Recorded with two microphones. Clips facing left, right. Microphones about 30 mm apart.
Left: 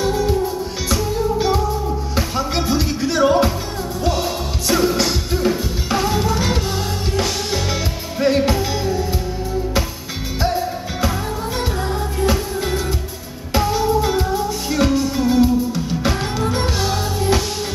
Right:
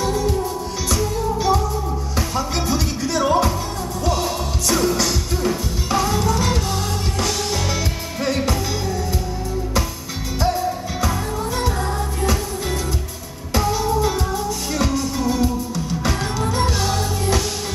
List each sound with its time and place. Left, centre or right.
0.0 s music: centre
10.4 s music: centre
13.5 s music: centre